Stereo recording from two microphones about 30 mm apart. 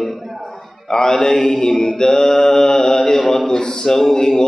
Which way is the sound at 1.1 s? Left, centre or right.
Left.